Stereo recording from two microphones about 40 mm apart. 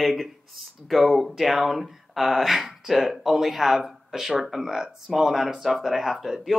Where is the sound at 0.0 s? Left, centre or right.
Centre.